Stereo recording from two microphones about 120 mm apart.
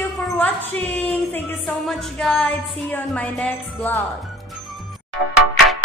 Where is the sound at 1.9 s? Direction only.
5° left (ahead or behind).